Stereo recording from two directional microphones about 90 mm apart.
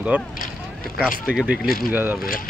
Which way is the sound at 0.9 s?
5° right (ahead or behind).